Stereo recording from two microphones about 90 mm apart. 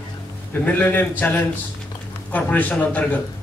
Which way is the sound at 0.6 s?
20° left (ahead or behind).